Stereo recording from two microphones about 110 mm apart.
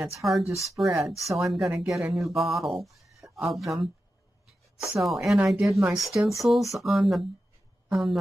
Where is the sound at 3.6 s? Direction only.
Centre (ahead or behind).